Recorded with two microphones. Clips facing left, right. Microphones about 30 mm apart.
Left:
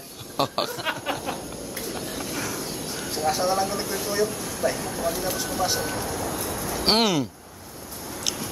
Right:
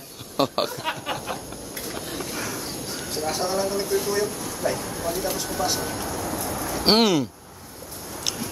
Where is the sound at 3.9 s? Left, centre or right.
Centre.